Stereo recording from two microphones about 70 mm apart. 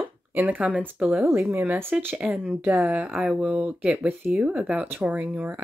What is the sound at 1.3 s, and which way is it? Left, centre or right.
Speech, right.